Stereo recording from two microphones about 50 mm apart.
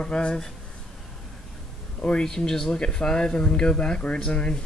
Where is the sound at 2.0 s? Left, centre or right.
Centre.